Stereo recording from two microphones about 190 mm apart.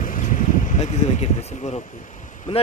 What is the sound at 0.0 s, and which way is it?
Speech, 45° left (ahead or behind).